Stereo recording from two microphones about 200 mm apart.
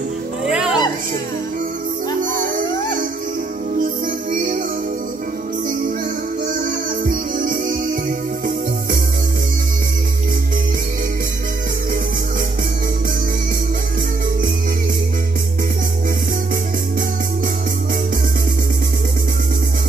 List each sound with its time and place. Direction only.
0.5 s music: 5° right (ahead or behind)
3.8 s music: 45° right (ahead or behind)
6.4 s music: 45° right (ahead or behind)